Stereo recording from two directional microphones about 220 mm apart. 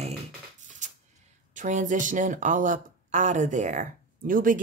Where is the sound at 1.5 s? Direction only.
35° right (ahead or behind).